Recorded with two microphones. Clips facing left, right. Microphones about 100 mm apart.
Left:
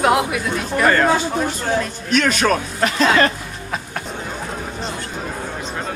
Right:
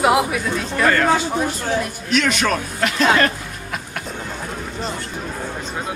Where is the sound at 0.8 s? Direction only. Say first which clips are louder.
Left 1 dB; 40° left (ahead or behind).